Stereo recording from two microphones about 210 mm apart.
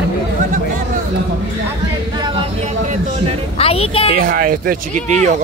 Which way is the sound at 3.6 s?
30° left (ahead or behind).